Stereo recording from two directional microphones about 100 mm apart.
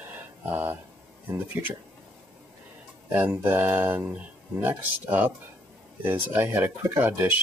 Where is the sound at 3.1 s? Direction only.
20° right (ahead or behind).